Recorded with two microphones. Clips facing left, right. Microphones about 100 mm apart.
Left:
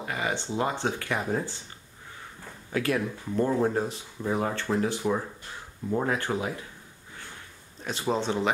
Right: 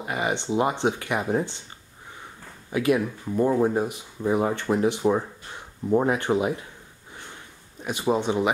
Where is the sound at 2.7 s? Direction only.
15° right (ahead or behind).